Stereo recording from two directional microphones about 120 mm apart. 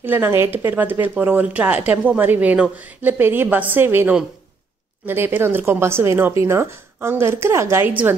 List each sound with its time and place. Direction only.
0.0 s a woman's voice: 15° right (ahead or behind)